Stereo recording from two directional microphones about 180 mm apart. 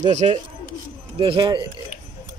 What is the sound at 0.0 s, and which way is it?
Speech, 40° right (ahead or behind).